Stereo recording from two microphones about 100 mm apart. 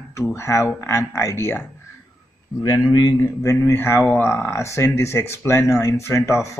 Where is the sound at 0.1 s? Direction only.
30° left (ahead or behind).